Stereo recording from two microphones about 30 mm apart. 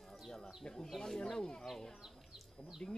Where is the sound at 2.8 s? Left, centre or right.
Left.